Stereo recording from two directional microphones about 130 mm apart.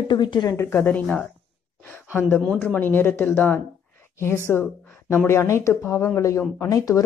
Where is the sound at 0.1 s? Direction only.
35° left (ahead or behind).